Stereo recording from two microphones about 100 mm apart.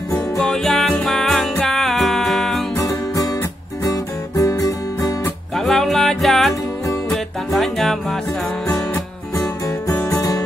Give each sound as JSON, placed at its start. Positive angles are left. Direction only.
{"t": 0.4, "sound": "music", "side_deg": 5}
{"t": 3.8, "sound": "music", "side_deg": 35}
{"t": 5.6, "sound": "music", "side_deg": 0}
{"t": 7.5, "sound": "music", "side_deg": 0}
{"t": 8.9, "sound": "music", "side_deg": 35}
{"t": 9.9, "sound": "guitar", "side_deg": 30}